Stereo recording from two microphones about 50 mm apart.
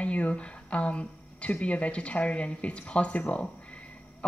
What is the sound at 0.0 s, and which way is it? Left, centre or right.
A woman's voice, left.